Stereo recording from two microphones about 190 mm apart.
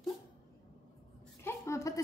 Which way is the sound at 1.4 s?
15° left (ahead or behind).